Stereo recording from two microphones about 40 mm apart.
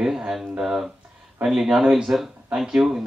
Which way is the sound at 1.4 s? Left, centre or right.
Centre.